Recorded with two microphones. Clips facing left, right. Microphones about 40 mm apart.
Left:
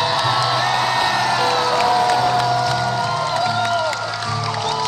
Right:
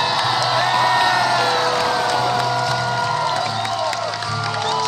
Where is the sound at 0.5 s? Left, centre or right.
Centre.